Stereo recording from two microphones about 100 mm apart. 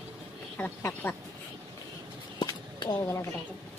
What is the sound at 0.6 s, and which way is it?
Speech, 20° left (ahead or behind).